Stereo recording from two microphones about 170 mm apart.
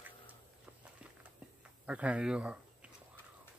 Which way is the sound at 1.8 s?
5° right (ahead or behind).